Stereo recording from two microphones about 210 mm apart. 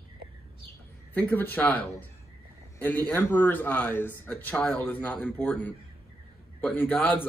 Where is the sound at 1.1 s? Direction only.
10° left (ahead or behind).